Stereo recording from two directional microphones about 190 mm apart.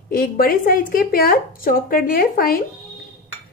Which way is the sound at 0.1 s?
50° left (ahead or behind).